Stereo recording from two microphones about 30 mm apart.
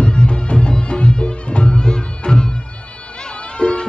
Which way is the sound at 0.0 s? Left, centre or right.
Left.